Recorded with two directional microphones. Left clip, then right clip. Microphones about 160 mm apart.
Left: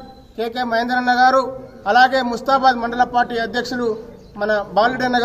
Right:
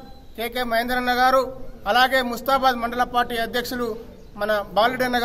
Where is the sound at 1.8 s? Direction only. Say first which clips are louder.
Left 5 dB; 15° right (ahead or behind).